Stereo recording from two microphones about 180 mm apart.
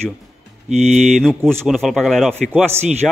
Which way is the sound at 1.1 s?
Centre (ahead or behind).